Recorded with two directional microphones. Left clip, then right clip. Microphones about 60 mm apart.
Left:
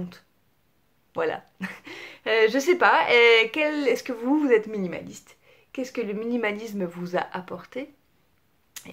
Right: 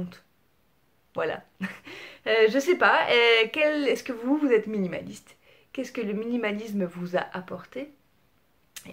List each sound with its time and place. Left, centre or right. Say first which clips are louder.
1.1 s speech: left 2 dB; left
4.7 s speech: even; centre; by 7.9 s left
8.8 s a sound: left 1 dB; left